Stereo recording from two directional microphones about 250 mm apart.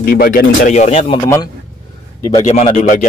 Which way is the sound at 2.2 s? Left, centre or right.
Centre.